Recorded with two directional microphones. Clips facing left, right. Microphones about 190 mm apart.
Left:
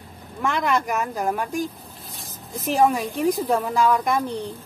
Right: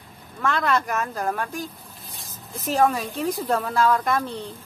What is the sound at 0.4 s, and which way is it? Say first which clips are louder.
Speech: even; 15° left (ahead or behind).